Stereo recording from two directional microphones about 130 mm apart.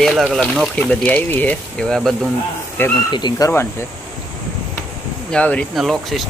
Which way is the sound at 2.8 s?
15° left (ahead or behind).